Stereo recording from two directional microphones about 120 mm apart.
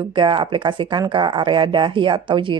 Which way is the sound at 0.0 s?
45° right (ahead or behind).